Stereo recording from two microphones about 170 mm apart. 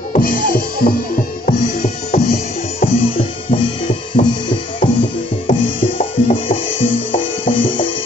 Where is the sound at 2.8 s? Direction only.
35° left (ahead or behind).